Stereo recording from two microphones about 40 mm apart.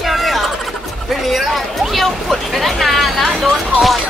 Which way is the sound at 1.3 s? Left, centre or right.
Centre.